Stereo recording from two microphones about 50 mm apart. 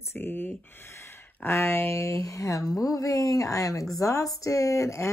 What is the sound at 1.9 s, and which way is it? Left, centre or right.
Speech, left.